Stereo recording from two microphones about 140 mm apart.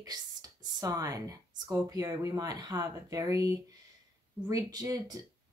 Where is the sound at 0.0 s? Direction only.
30° right (ahead or behind).